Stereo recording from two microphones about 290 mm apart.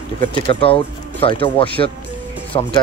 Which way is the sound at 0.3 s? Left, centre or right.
Centre.